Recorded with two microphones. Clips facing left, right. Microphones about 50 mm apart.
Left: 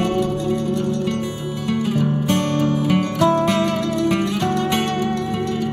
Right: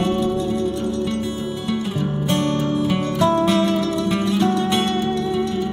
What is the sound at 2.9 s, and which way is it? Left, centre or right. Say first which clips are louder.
Music: left 1 dB; left.